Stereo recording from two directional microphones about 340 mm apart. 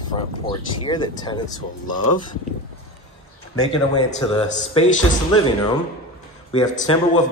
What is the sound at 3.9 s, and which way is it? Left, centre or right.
Speech, centre.